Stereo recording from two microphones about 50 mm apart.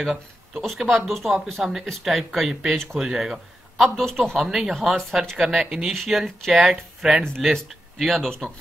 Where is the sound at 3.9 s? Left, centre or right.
Centre.